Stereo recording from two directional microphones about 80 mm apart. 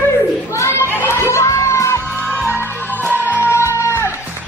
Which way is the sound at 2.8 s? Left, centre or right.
Left.